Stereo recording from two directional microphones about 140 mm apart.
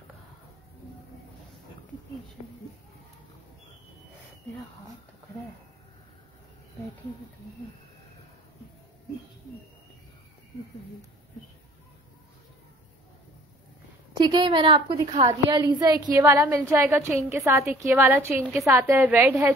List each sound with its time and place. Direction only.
14.2 s a woman's voice: 35° right (ahead or behind)
15.0 s a woman's voice: 55° right (ahead or behind)
15.4 s a woman's voice: 25° right (ahead or behind)